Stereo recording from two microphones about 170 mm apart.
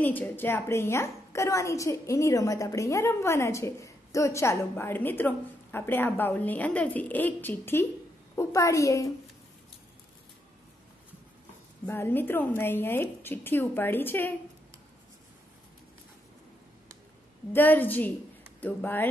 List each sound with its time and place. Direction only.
0.0 s a woman's voice: 10° left (ahead or behind)
11.8 s a woman's voice: 10° left (ahead or behind)
17.5 s a woman's voice: 10° left (ahead or behind)